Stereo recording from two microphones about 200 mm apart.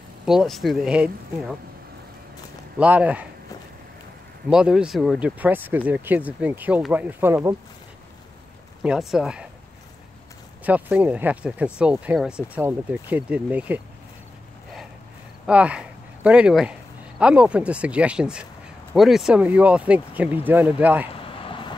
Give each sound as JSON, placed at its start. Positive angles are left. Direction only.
{"t": 0.2, "sound": "speech", "side_deg": 0}
{"t": 2.8, "sound": "speech", "side_deg": -5}
{"t": 4.5, "sound": "speech", "side_deg": -5}
{"t": 8.8, "sound": "speech", "side_deg": -5}
{"t": 10.6, "sound": "speech", "side_deg": -5}
{"t": 15.4, "sound": "speech", "side_deg": -5}
{"t": 21.1, "sound": "a sound", "side_deg": 25}